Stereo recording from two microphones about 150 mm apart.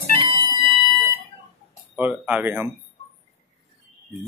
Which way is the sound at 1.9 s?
10° right (ahead or behind).